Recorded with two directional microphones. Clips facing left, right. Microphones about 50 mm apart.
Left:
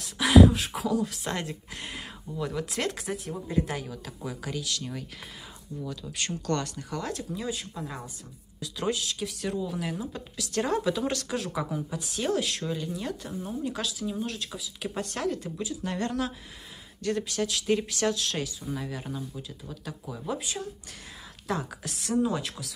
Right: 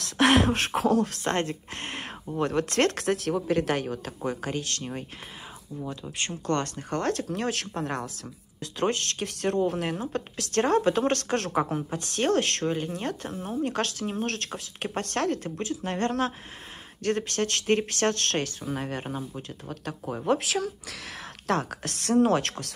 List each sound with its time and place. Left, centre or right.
0.0 s speech: right
6.6 s speech: right
8.7 s speech: right
20.2 s speech: right